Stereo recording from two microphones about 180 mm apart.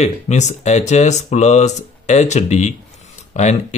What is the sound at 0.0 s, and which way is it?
Speech, 40° left (ahead or behind).